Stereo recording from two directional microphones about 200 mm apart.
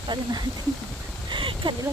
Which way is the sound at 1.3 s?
25° right (ahead or behind).